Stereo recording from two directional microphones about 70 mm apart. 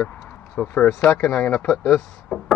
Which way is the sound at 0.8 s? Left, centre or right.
Left.